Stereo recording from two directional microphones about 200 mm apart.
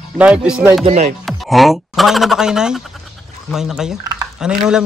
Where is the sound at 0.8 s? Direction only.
35° right (ahead or behind).